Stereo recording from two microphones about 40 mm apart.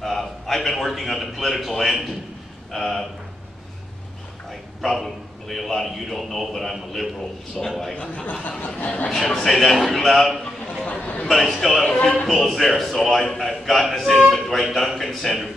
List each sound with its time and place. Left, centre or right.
0.0 s a man's voice: centre
4.5 s a man's voice: centre
8.3 s a sound: left
8.8 s speech: left
9.1 s speech: centre
10.9 s a man's voice: left
11.5 s speech: centre
11.8 s a man's voice: left
12.4 s speech: centre